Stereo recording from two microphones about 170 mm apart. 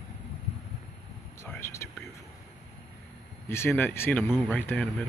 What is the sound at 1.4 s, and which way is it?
Whispering, 15° left (ahead or behind).